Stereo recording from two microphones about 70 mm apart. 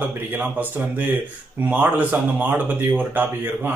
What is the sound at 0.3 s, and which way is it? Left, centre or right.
Speech, right.